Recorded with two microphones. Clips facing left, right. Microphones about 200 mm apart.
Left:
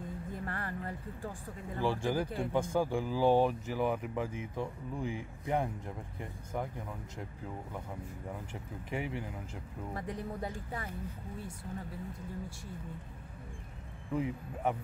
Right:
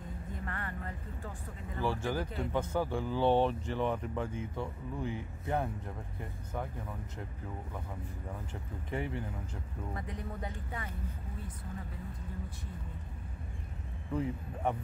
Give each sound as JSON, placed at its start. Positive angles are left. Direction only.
{"t": 0.5, "sound": "music", "side_deg": 35}
{"t": 1.8, "sound": "speech", "side_deg": 15}
{"t": 8.9, "sound": "speech", "side_deg": 10}
{"t": 9.9, "sound": "speech", "side_deg": 35}
{"t": 14.1, "sound": "speech", "side_deg": 5}